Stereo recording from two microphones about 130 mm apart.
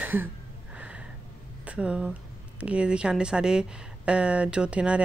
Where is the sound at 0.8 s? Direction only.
10° right (ahead or behind).